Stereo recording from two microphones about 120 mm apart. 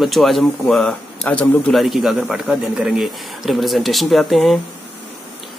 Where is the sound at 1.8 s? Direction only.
Centre (ahead or behind).